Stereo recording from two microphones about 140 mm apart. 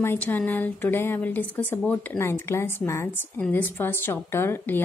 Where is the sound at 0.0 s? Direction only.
15° left (ahead or behind).